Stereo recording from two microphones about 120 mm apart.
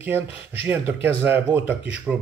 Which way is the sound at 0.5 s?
15° right (ahead or behind).